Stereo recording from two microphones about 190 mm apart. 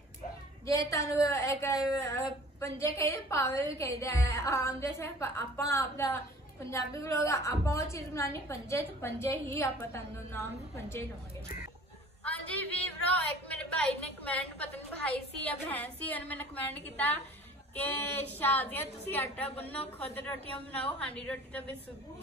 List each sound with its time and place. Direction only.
0.7 s a woman's voice: 15° left (ahead or behind)
12.3 s a woman's voice: 5° left (ahead or behind)